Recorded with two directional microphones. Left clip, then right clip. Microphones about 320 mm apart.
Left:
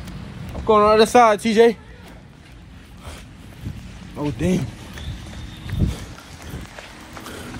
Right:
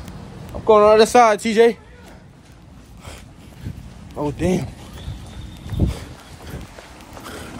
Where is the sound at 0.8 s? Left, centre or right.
Centre.